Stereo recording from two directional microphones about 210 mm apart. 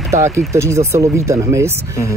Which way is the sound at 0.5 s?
15° right (ahead or behind).